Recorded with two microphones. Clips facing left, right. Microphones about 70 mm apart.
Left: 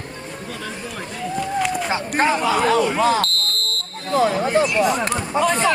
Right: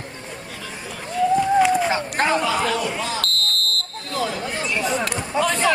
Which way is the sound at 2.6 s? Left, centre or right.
Left.